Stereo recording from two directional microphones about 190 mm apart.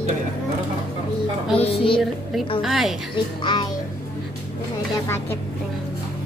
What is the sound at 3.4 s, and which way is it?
Speech, 25° left (ahead or behind).